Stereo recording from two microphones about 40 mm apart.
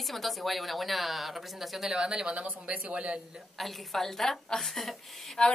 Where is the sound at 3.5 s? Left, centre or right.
Centre.